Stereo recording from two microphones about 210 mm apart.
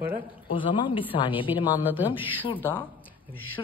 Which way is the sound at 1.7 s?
10° right (ahead or behind).